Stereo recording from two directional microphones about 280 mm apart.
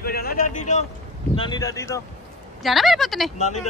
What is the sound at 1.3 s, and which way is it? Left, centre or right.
Speech, centre.